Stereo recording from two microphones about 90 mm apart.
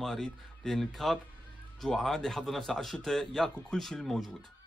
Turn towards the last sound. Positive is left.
turn(degrees=5)  # may be behind; listen again after turning